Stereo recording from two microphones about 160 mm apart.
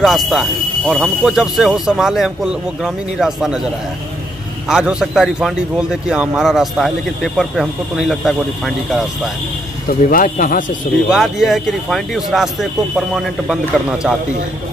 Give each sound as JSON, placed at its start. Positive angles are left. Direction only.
{"t": 0.0, "sound": "speech", "side_deg": 0}
{"t": 4.6, "sound": "speech", "side_deg": -5}
{"t": 9.8, "sound": "speech", "side_deg": 60}
{"t": 11.1, "sound": "speech", "side_deg": 0}